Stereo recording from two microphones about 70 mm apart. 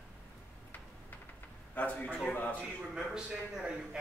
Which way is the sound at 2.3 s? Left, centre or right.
Left.